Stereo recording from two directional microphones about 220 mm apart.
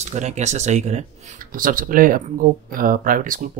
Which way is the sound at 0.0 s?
30° right (ahead or behind).